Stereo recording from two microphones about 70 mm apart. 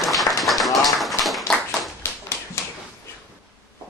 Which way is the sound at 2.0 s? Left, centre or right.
Left.